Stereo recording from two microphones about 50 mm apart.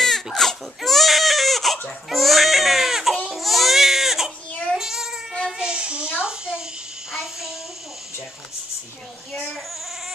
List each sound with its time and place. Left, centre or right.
0.0 s baby cry: centre
4.7 s child singing: centre
5.6 s a sound: centre
7.1 s child singing: centre